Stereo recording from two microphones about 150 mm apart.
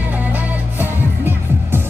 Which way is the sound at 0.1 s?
10° right (ahead or behind).